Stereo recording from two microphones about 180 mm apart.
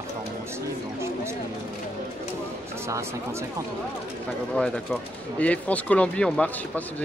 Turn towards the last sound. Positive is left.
turn(degrees=5)  # may be behind; listen again after turning